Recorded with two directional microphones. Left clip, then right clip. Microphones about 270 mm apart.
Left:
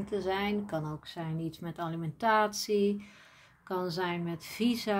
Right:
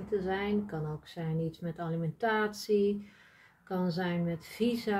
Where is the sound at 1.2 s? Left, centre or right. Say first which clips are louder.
Right 3 dB; left.